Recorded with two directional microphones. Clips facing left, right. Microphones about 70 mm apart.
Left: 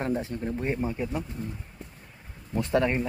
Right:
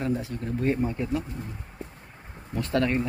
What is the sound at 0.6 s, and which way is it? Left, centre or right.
Speech, centre.